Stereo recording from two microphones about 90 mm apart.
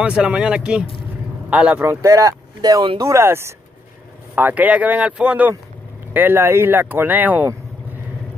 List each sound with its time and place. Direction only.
0.0 s speech: 15° right (ahead or behind)
2.0 s speech: 40° right (ahead or behind)
3.0 s speech: 30° right (ahead or behind); by 5.5 s 15° right (ahead or behind)
6.1 s speech: 25° right (ahead or behind)